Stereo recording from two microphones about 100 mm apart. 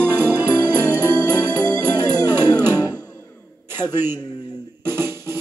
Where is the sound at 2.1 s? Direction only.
20° right (ahead or behind).